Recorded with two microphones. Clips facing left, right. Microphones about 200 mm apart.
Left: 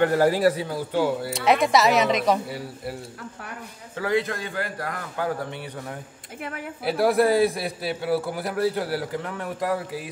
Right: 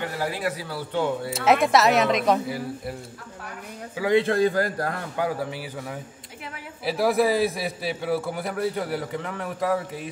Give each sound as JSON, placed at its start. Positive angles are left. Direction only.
{"t": 0.0, "sound": "a man's voice", "side_deg": 45}
{"t": 0.6, "sound": "a man's voice", "side_deg": 20}
{"t": 0.9, "sound": "a man's voice", "side_deg": 5}
{"t": 4.0, "sound": "a man's voice", "side_deg": -25}
{"t": 6.8, "sound": "a man's voice", "side_deg": 0}